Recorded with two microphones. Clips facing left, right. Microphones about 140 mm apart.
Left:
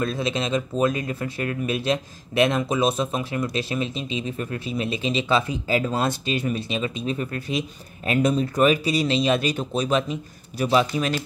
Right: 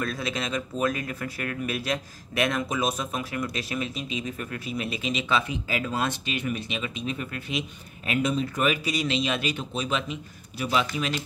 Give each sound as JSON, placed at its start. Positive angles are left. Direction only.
{"t": 0.0, "sound": "speech", "side_deg": 25}